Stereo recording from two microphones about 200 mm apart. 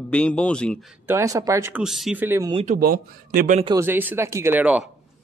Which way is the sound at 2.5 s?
40° right (ahead or behind).